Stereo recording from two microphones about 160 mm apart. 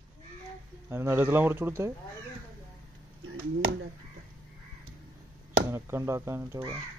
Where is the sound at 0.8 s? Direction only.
15° right (ahead or behind).